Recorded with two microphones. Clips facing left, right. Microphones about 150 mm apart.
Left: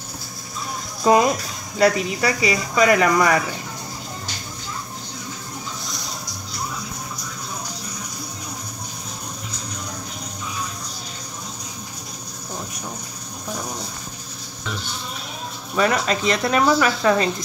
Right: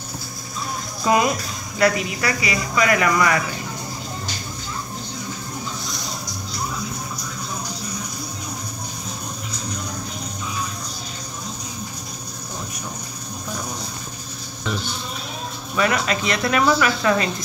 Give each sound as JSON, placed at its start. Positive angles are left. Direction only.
{"t": 1.0, "sound": "speech", "side_deg": 35}
{"t": 15.7, "sound": "speech", "side_deg": 35}